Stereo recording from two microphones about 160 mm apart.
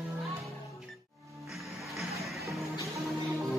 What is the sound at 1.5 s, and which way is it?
Music, centre (ahead or behind).